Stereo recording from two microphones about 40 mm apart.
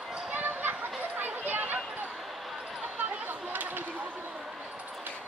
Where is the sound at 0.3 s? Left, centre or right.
Right.